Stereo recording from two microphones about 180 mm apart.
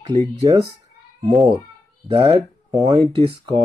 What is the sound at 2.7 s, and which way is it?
Speech, 25° right (ahead or behind).